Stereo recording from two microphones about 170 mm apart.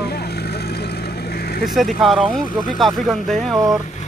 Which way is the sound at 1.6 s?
Centre (ahead or behind).